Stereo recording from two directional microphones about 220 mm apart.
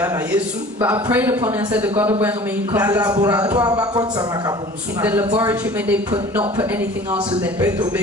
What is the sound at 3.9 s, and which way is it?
Speech, 15° right (ahead or behind).